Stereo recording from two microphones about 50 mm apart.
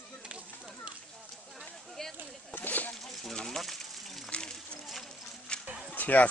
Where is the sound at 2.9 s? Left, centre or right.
Centre.